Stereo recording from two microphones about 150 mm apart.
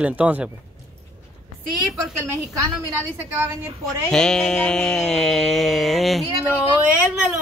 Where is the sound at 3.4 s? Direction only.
20° right (ahead or behind).